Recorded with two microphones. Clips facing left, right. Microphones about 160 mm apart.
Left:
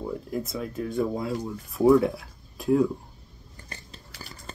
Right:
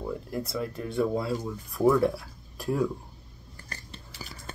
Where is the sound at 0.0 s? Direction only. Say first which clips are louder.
Left 2 dB; centre (ahead or behind).